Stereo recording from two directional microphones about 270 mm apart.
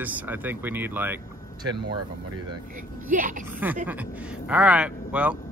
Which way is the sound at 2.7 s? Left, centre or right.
Right.